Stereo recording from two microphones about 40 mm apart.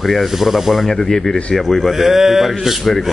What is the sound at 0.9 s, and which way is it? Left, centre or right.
Speech, centre.